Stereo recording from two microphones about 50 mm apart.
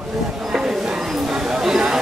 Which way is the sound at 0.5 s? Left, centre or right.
Centre.